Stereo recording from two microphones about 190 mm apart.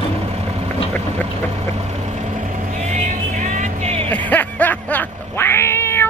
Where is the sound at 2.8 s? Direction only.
40° right (ahead or behind).